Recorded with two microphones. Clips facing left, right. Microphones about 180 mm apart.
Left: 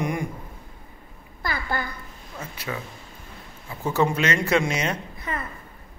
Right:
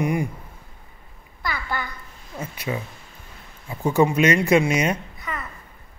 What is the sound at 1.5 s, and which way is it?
Speech, 40° left (ahead or behind).